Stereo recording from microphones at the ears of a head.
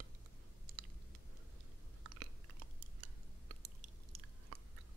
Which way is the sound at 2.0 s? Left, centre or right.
Right.